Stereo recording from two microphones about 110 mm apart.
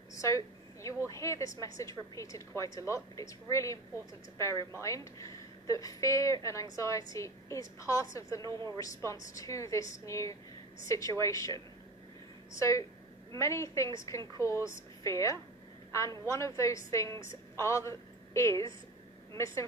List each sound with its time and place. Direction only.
0.8 s a woman's voice: 30° left (ahead or behind)
5.7 s a woman's voice: 30° left (ahead or behind)